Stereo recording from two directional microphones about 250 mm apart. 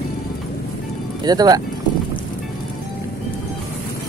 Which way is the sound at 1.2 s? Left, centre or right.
Centre.